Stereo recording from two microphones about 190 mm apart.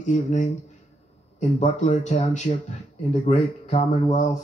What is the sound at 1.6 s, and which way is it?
Speech, 35° left (ahead or behind).